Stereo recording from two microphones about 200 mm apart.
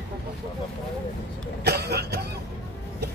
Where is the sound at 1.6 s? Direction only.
55° right (ahead or behind).